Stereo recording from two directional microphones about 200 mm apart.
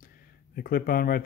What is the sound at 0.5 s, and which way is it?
Speech, 45° left (ahead or behind).